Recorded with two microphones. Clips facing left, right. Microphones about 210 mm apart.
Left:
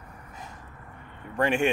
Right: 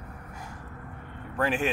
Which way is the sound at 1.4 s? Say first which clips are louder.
Left 3 dB; 5° right (ahead or behind).